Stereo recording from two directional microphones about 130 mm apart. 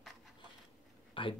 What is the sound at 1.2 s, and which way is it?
Speech, 40° left (ahead or behind).